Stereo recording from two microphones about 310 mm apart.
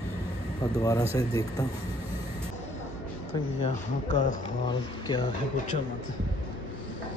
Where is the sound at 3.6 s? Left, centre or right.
Left.